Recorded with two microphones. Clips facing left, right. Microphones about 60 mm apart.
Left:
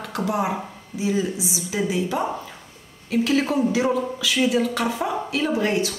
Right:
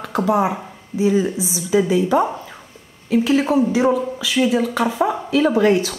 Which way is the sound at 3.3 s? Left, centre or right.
Right.